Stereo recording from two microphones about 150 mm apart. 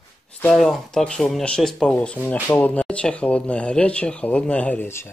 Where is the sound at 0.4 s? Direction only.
5° left (ahead or behind).